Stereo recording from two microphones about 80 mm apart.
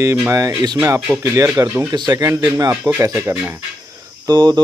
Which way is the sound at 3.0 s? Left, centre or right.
Right.